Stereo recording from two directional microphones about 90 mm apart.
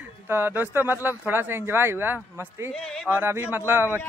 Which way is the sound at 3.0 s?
25° right (ahead or behind).